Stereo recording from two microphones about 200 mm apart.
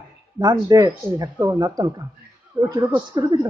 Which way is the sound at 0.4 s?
20° right (ahead or behind).